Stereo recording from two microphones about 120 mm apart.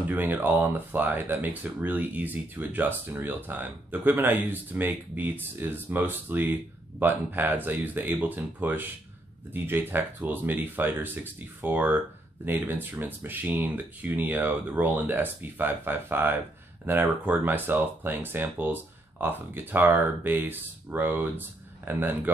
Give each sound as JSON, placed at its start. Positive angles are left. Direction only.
{"t": 0.0, "sound": "speech", "side_deg": -15}